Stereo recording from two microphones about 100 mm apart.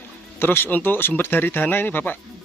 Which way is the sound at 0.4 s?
20° left (ahead or behind).